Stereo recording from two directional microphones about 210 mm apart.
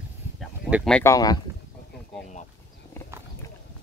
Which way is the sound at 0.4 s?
Centre (ahead or behind).